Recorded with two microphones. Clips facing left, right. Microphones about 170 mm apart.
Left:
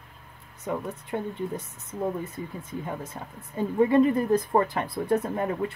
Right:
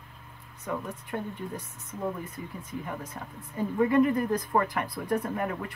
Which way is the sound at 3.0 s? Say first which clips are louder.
Left 2 dB; 25° left (ahead or behind).